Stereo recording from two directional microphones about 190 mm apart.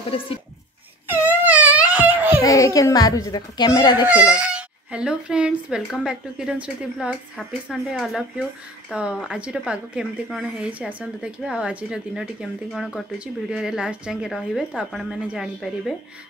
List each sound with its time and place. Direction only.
1.0 s baby cry: 10° right (ahead or behind)
2.4 s a child's voice: 15° left (ahead or behind)
4.4 s a woman's voice: 5° right (ahead or behind)